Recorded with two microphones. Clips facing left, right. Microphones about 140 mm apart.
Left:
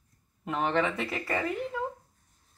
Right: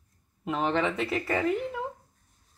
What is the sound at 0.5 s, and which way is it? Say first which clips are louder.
Speech: right 1 dB; centre (ahead or behind).